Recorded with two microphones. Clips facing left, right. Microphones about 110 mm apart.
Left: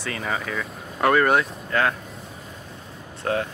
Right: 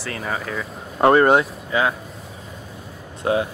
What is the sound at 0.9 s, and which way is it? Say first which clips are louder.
Speech: right 5 dB; 25° right (ahead or behind).